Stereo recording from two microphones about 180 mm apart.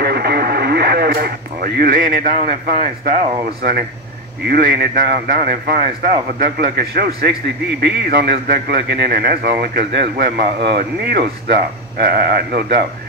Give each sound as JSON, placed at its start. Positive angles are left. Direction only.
{"t": 0.0, "sound": "radio", "side_deg": -60}
{"t": 4.5, "sound": "a man's voice", "side_deg": -55}